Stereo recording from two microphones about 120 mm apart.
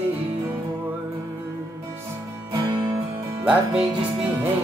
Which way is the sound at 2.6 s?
35° right (ahead or behind).